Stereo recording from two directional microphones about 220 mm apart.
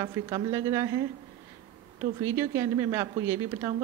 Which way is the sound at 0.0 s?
15° right (ahead or behind).